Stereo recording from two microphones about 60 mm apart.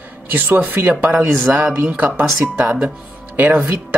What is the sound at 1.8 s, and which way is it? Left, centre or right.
Speech, right.